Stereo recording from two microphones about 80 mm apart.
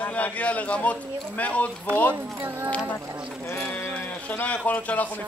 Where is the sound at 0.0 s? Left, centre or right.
Centre.